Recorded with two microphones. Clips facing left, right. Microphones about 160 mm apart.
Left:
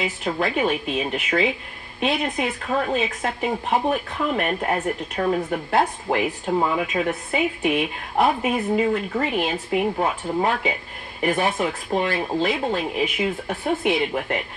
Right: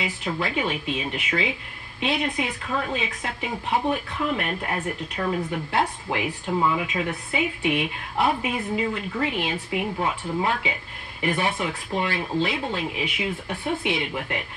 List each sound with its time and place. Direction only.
0.0 s speech: 45° left (ahead or behind)